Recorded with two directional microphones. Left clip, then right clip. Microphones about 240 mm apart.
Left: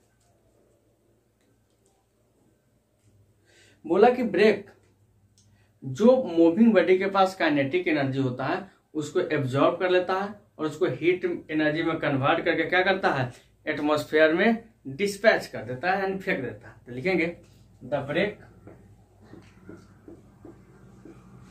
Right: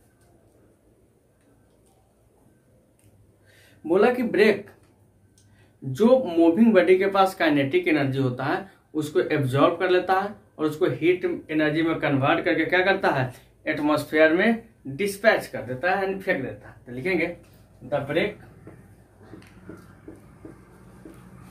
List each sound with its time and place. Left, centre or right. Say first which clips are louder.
3.8 s speech: even; centre
5.9 s speech: right 1 dB; centre; by 17.3 s left